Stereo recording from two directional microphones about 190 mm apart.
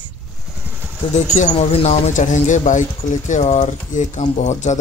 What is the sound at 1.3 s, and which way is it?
Speech, 35° left (ahead or behind).